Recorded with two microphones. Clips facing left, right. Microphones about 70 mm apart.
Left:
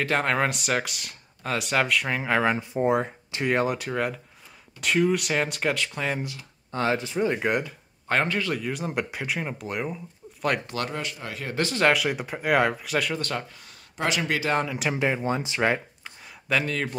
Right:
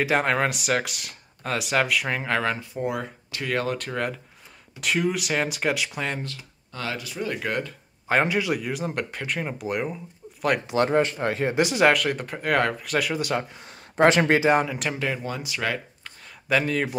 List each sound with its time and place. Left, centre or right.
0.0 s speech: centre
2.5 s speech: left
3.7 s speech: centre
6.7 s speech: left
8.1 s speech: centre
10.9 s speech: right
11.5 s speech: centre
11.9 s speech: centre
13.4 s speech: right
13.9 s speech: right
14.6 s speech: centre
14.9 s speech: centre
16.4 s speech: centre